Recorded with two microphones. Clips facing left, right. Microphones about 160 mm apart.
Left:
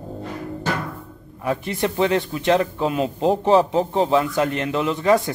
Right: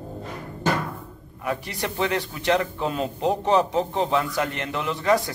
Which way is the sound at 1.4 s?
25° left (ahead or behind).